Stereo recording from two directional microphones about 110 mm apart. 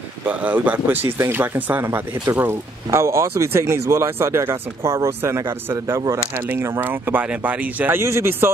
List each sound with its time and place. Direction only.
0.2 s speech: 15° right (ahead or behind)